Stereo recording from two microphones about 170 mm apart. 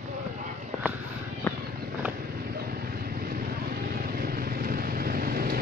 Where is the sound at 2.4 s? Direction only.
65° right (ahead or behind).